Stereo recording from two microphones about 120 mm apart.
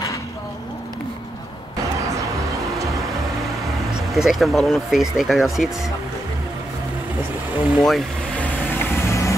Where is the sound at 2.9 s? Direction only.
Centre (ahead or behind).